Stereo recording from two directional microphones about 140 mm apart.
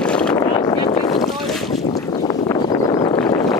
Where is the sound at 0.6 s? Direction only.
30° left (ahead or behind).